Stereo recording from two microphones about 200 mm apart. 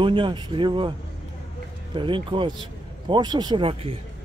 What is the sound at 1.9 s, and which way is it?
Speech, 25° right (ahead or behind).